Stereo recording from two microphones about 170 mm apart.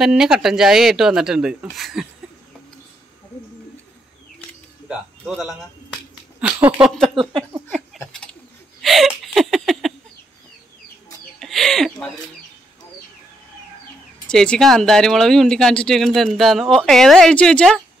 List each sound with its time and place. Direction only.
0.0 s speech: 5° right (ahead or behind)
6.4 s speech: 10° right (ahead or behind)
7.2 s speech: 25° right (ahead or behind)
8.1 s a sound: 5° left (ahead or behind)
11.3 s a sound: centre (ahead or behind)
14.3 s speech: 5° left (ahead or behind)